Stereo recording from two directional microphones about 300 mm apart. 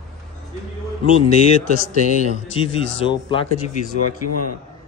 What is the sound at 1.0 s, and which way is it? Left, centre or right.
A man's voice, left.